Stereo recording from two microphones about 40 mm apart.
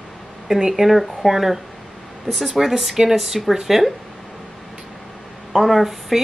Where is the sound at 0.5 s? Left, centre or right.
Centre.